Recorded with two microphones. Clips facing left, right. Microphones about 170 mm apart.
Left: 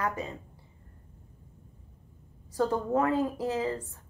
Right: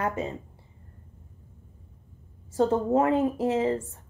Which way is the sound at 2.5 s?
25° right (ahead or behind).